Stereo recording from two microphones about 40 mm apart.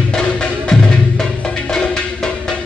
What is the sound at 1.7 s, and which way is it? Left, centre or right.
Music, centre.